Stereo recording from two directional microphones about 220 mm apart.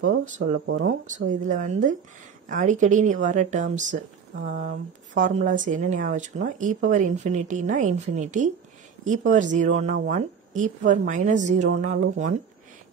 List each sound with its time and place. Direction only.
0.7 s speech: 55° right (ahead or behind)
1.5 s speech: 35° right (ahead or behind)